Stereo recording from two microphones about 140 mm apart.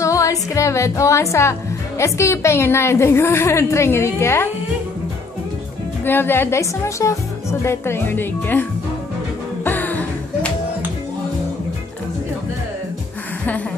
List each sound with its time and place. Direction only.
0.0 s speech: 20° left (ahead or behind)
6.0 s a woman's voice: 15° left (ahead or behind)
9.7 s music: 15° left (ahead or behind)